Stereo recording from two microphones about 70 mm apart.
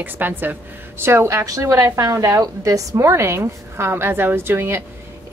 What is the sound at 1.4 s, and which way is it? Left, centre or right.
A woman's voice, right.